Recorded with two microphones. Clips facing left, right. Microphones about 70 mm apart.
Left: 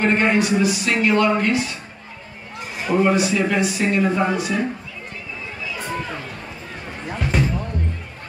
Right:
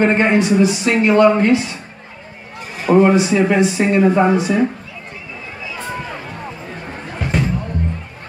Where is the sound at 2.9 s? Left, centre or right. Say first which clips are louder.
Right 6 dB; right.